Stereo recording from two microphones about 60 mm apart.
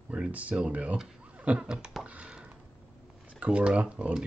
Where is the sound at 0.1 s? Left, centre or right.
Right.